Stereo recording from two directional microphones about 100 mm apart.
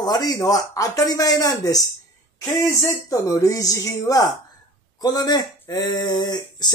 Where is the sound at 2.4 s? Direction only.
25° left (ahead or behind); by 6.7 s 45° left (ahead or behind).